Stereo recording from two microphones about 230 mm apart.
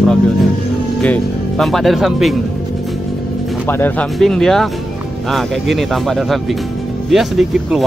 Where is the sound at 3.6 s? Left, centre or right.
Centre.